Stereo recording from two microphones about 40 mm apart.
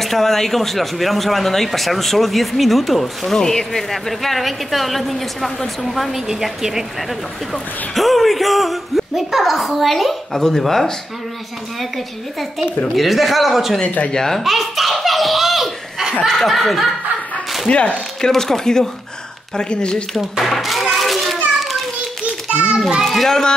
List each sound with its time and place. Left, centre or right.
0.0 s speech: centre
3.3 s speech: centre
6.2 s a woman's voice: centre
12.9 s speech: centre
14.1 s speech: centre
14.4 s belly laugh: centre
16.3 s speech: centre
17.6 s speech: left
18.2 s speech: centre; by 20.1 s left
20.4 s children playing: centre
22.5 s children playing: right
23.0 s speech: centre